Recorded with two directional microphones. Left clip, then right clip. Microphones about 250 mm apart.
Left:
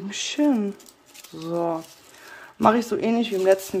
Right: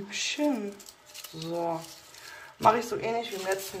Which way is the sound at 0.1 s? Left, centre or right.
Left.